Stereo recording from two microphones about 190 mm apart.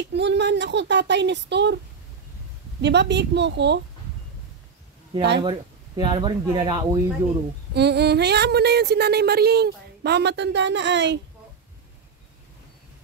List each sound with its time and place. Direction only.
0.0 s speech: 65° right (ahead or behind)
2.8 s speech: 65° right (ahead or behind)
5.4 s speech: 25° right (ahead or behind)
7.7 s speech: 60° right (ahead or behind)